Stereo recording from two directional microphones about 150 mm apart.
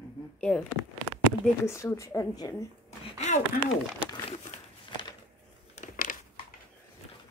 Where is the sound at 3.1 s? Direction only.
50° left (ahead or behind).